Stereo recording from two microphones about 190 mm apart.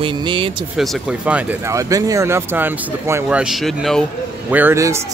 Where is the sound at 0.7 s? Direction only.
Centre (ahead or behind).